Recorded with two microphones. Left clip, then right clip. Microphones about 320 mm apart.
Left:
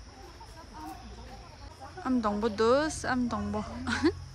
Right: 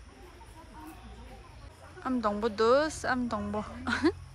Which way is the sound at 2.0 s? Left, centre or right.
Centre.